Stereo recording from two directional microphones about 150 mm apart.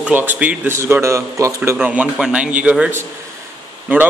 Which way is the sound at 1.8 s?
10° right (ahead or behind).